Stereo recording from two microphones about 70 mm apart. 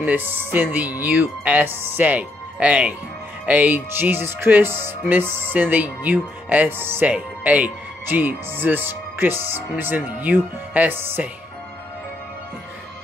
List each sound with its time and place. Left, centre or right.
0.0 s speech: right